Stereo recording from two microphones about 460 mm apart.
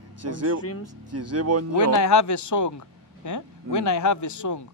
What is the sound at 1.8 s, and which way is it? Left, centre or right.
Speech, left.